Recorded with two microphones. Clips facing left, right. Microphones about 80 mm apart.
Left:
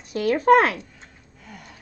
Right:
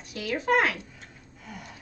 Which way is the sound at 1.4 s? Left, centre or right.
Centre.